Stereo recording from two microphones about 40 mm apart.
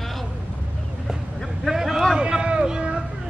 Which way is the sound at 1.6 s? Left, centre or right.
Centre.